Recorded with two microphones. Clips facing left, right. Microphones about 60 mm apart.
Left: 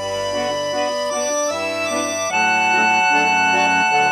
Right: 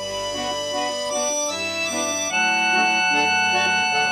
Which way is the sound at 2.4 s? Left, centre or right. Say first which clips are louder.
Left 3 dB; left.